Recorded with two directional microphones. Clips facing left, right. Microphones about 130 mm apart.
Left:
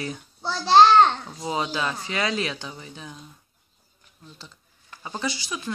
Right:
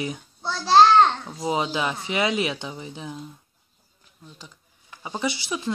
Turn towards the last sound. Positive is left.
turn(degrees=-20)  # may be behind; listen again after turning